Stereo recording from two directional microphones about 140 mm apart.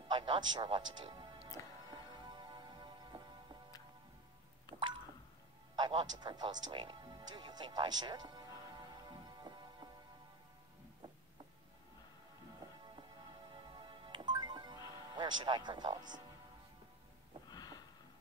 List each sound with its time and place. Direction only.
0.1 s a man's voice: 35° right (ahead or behind)
1.9 s music: 30° right (ahead or behind)
5.8 s music: 30° right (ahead or behind)
13.7 s music: 35° right (ahead or behind)
15.1 s speech: 30° right (ahead or behind)
17.5 s a sound: 30° left (ahead or behind)